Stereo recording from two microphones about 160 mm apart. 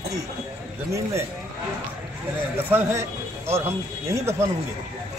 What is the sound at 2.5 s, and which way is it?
A man's voice, 15° right (ahead or behind).